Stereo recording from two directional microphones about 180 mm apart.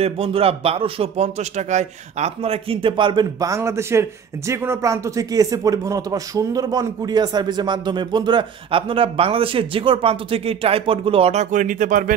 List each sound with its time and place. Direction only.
0.0 s speech: 30° right (ahead or behind); by 12.2 s 50° right (ahead or behind)